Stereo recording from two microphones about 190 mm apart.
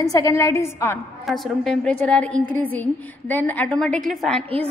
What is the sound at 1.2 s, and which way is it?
A woman's voice, centre (ahead or behind).